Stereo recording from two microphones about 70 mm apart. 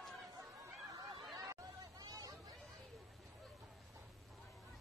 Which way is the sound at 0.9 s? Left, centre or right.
Right.